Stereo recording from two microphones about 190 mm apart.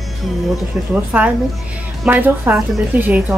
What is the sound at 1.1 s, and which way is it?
A woman's voice, 10° right (ahead or behind).